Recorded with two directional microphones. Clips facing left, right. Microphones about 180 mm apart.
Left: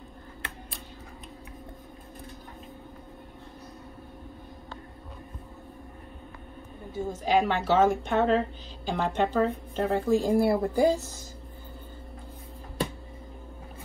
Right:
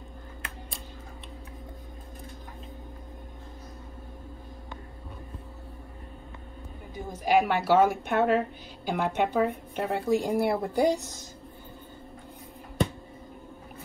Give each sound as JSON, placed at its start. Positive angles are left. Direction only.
{"t": 6.9, "sound": "a woman's voice", "side_deg": -10}